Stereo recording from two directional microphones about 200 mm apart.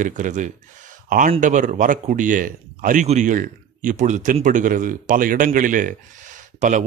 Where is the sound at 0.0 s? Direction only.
40° right (ahead or behind).